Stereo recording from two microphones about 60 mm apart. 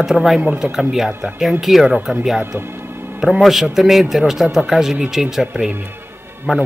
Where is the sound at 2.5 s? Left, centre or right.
Right.